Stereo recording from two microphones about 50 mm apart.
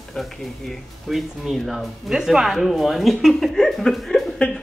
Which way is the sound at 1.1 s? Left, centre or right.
Centre.